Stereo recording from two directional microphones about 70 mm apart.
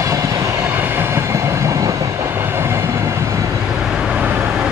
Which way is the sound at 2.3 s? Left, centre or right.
Right.